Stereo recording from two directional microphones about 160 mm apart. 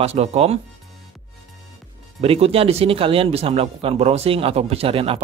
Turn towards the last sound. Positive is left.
turn(degrees=-35)  # may be behind; listen again after turning